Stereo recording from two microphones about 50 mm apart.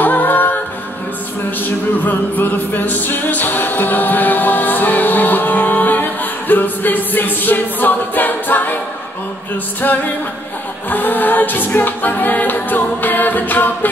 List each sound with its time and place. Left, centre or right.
0.0 s a capella: left
2.0 s music: left
9.8 s a capella: left